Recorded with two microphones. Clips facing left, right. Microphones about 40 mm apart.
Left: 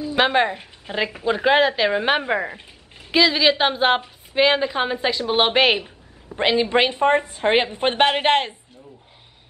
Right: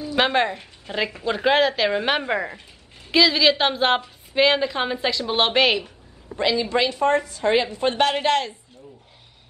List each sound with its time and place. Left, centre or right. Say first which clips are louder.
0.1 s a woman's voice: left 2 dB; centre
6.3 s a woman's voice: left 3 dB; left